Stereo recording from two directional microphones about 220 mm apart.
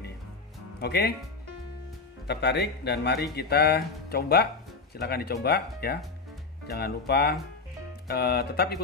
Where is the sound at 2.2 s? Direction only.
50° left (ahead or behind).